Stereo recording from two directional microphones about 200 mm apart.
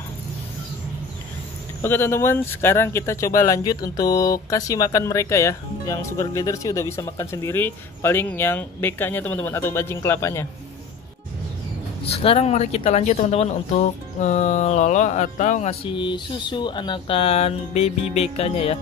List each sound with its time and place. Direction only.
1.8 s speech: 10° left (ahead or behind)
12.0 s speech: 30° left (ahead or behind)